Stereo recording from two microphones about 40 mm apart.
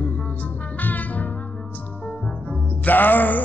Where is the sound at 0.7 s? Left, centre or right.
Left.